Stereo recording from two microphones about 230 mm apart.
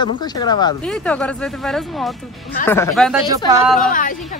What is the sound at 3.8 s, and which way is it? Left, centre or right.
Speech, left.